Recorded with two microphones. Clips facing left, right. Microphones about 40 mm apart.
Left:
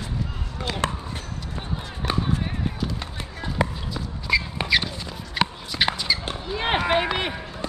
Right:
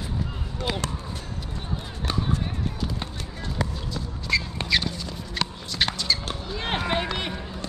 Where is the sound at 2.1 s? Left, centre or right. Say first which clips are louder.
Left 3 dB; left.